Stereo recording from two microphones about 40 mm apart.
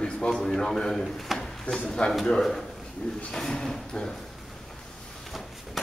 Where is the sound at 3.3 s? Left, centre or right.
Centre.